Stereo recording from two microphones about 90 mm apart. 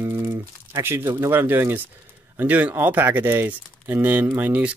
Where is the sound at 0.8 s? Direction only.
25° right (ahead or behind).